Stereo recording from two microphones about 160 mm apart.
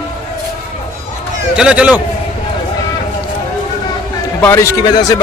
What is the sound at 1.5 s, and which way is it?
Speech, 5° right (ahead or behind).